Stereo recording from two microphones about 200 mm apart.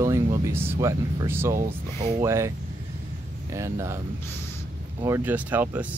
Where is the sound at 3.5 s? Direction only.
15° right (ahead or behind).